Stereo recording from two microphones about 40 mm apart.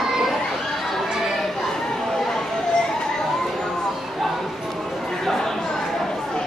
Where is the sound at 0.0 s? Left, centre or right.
Centre.